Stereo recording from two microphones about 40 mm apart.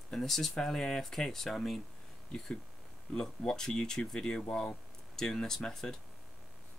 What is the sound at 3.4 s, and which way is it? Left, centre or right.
Speech, centre.